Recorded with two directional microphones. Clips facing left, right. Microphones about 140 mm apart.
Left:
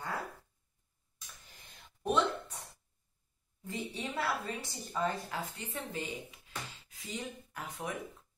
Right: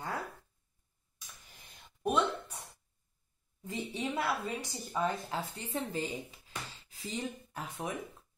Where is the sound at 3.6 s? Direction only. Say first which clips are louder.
Right 3 dB; 20° right (ahead or behind).